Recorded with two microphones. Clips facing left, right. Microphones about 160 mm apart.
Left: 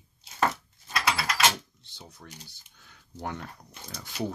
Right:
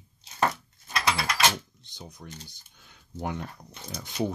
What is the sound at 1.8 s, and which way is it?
Speech, 15° right (ahead or behind).